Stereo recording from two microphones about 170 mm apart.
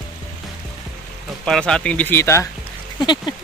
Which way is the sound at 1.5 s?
5° left (ahead or behind).